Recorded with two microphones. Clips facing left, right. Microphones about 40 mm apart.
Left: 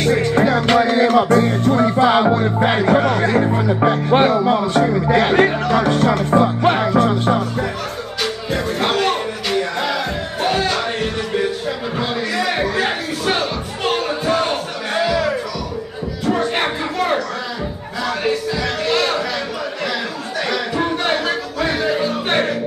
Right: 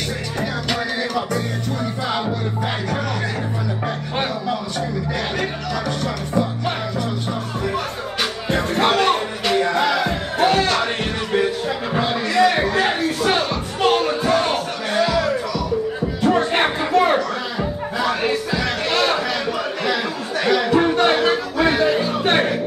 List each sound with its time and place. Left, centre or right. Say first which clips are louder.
0.0 s music: left 10 dB; left
3.3 s speech: left 9 dB; left
6.6 s music: left 8 dB; left
6.9 s music: left 9 dB; left
8.5 s music: right 3 dB; centre
12.0 s music: right 5 dB; centre
16.3 s a sound: right 1 dB; centre
18.6 s a sound: left 1 dB; centre
20.4 s chatter: right 5 dB; centre
21.2 s music: right 3 dB; centre
21.8 s music: right 1 dB; centre